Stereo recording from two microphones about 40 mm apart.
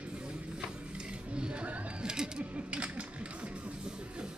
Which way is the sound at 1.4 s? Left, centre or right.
Right.